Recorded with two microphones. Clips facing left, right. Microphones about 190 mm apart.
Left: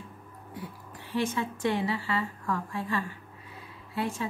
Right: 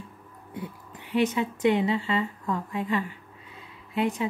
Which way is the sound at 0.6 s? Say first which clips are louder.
Right 4 dB; 20° right (ahead or behind).